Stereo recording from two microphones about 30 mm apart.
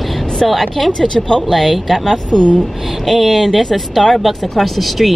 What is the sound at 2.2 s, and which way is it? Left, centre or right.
Speech, left.